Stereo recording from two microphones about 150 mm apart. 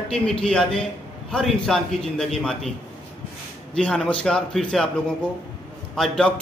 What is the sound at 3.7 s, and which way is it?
A man's voice, 5° left (ahead or behind).